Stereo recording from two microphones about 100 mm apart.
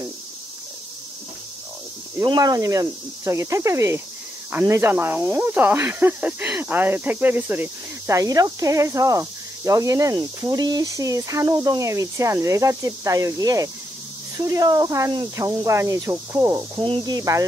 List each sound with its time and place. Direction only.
2.2 s speech: 40° right (ahead or behind); by 8.2 s 20° right (ahead or behind)
8.2 s speech: 35° right (ahead or behind)